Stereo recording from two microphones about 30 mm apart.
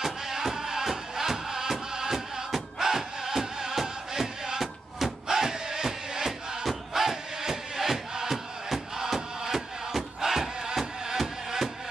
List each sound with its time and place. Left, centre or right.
0.0 s music: centre
4.6 s music: centre